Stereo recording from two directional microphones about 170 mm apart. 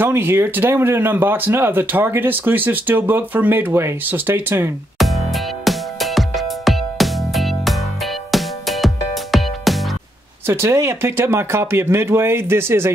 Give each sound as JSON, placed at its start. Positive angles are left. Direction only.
{"t": 0.0, "sound": "speech", "side_deg": -10}
{"t": 4.9, "sound": "music", "side_deg": 0}
{"t": 10.4, "sound": "speech", "side_deg": -15}